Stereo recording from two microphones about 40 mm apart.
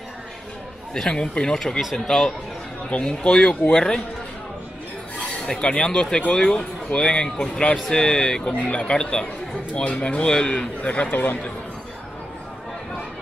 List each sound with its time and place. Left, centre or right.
1.0 s speech: left
1.5 s speech: centre
2.9 s speech: left
5.6 s a man's voice: left